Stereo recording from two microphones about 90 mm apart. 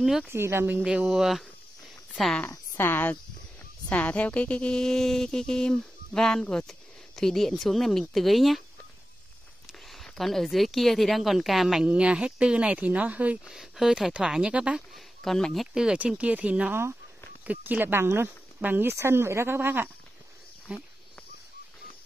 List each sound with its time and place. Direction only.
0.3 s speech: 30° right (ahead or behind)
0.8 s speech: 5° right (ahead or behind)
2.8 s speech: 25° left (ahead or behind); by 8.6 s centre (ahead or behind)
9.7 s speech: centre (ahead or behind); by 13.4 s 15° right (ahead or behind)
13.5 s speech: 5° right (ahead or behind)
15.0 s speech: 5° left (ahead or behind); by 20.8 s 15° right (ahead or behind)